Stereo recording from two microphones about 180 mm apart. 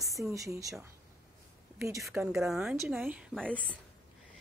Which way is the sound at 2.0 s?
Centre (ahead or behind).